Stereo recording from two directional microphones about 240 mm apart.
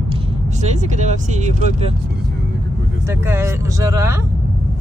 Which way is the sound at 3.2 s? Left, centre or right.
Centre.